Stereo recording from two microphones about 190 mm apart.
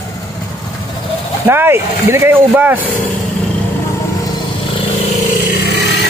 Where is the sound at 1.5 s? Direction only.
10° right (ahead or behind).